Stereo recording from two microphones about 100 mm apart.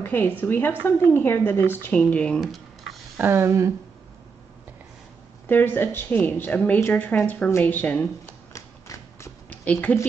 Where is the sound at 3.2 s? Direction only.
25° right (ahead or behind).